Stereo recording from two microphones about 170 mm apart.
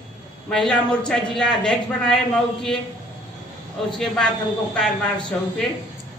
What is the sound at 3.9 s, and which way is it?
Speech, 5° left (ahead or behind).